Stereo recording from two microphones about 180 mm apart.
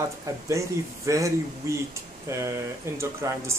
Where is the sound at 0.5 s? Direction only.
15° right (ahead or behind).